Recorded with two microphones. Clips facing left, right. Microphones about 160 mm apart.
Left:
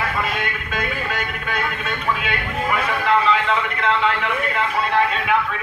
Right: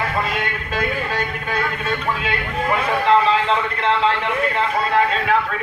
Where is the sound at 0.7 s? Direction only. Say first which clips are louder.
Right 3 dB; 35° right (ahead or behind).